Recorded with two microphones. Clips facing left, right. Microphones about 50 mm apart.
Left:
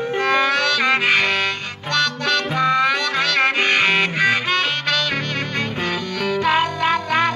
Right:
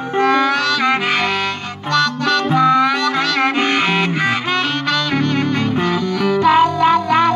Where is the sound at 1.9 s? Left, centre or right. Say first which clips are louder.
Right 4 dB; centre.